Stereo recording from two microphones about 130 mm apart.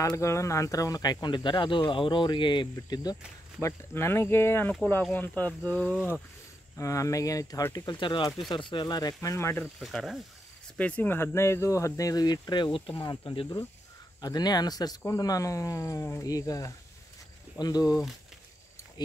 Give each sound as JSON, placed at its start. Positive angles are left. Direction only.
{"t": 0.0, "sound": "speech", "side_deg": 25}
{"t": 3.6, "sound": "speech", "side_deg": 20}
{"t": 6.8, "sound": "speech", "side_deg": 25}
{"t": 9.8, "sound": "speech", "side_deg": 0}
{"t": 10.8, "sound": "speech", "side_deg": 10}
{"t": 17.8, "sound": "speech", "side_deg": -5}